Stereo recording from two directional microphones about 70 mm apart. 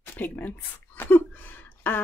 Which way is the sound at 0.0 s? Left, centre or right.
Left.